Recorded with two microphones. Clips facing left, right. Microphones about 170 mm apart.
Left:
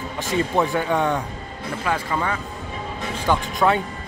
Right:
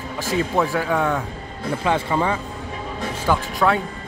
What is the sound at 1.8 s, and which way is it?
Speech, 25° right (ahead or behind).